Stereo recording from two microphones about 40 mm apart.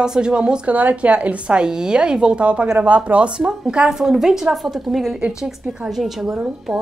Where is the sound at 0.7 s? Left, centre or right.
Right; by 5.1 s centre.